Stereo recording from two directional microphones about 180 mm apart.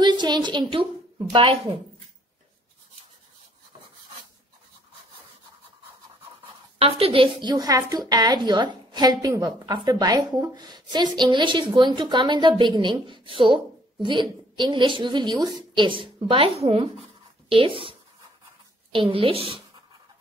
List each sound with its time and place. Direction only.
0.0 s a woman's voice: 25° right (ahead or behind)
6.8 s a woman's voice: 30° right (ahead or behind)